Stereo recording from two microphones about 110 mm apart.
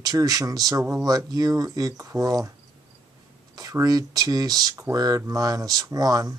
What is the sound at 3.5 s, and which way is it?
Speech, 30° right (ahead or behind).